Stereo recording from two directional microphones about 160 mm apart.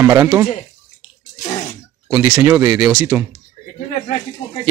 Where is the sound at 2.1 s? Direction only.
10° right (ahead or behind).